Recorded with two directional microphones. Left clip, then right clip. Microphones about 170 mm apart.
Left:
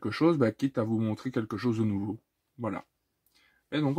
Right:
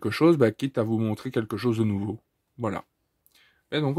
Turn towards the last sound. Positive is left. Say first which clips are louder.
# right 3 dB
turn(degrees=-45)  # may be behind; listen again after turning